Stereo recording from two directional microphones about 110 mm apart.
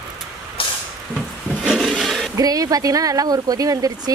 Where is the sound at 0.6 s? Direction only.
55° left (ahead or behind).